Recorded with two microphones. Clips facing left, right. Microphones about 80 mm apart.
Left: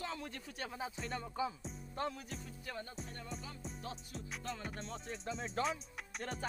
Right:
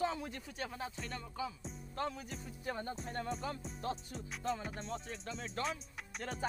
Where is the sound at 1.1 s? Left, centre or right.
Left.